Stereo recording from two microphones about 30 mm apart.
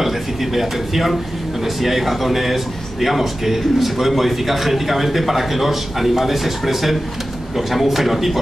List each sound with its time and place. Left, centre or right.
0.0 s a man's voice: centre